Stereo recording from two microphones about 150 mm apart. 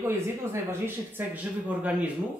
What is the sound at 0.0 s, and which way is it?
Speech, 15° right (ahead or behind).